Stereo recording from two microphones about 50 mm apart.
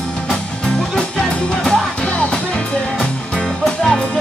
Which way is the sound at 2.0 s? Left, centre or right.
Left.